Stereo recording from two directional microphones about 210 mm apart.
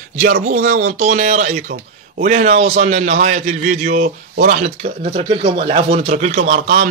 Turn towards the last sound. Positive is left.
turn(degrees=-30)  # may be behind; listen again after turning